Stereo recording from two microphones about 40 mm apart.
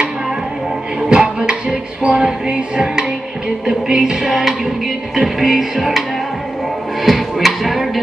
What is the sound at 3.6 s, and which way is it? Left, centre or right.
Music, centre.